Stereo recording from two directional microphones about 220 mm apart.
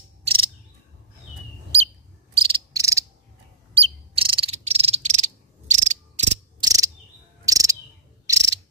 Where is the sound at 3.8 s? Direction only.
25° right (ahead or behind).